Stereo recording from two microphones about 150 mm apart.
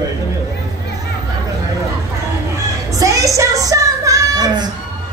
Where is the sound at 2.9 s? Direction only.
20° right (ahead or behind).